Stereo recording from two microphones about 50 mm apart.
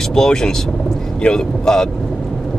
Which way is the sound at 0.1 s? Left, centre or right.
Centre.